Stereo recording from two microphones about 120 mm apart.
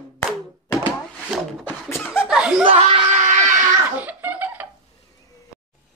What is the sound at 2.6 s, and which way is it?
Speech, 50° right (ahead or behind).